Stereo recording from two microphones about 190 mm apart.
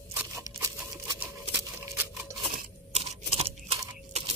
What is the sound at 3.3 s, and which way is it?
Crunch, 30° right (ahead or behind).